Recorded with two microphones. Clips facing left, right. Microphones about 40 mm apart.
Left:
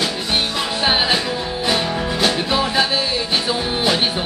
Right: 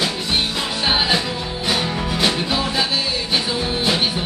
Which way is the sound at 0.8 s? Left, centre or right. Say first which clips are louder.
Left 1 dB; centre.